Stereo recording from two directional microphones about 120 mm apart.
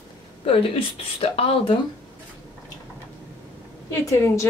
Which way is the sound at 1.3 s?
50° left (ahead or behind).